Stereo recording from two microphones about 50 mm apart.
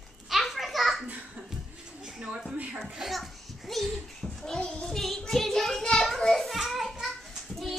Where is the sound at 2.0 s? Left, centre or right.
Centre.